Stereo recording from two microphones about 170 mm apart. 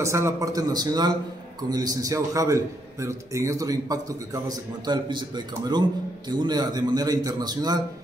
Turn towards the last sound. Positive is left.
turn(degrees=-25)  # may be behind; listen again after turning